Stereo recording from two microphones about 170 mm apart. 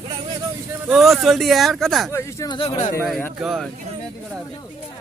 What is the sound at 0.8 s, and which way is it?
Speech, centre (ahead or behind).